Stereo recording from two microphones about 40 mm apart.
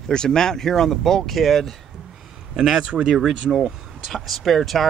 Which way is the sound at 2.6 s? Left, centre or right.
Centre.